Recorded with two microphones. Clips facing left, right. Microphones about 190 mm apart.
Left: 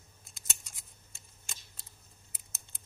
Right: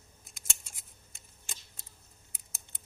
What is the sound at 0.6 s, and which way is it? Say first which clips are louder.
Scissors: right 1 dB; 20° right (ahead or behind).